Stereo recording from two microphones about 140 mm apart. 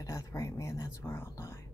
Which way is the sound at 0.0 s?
20° left (ahead or behind).